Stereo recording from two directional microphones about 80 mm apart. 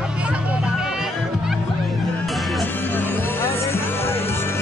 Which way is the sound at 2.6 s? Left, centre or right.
Left.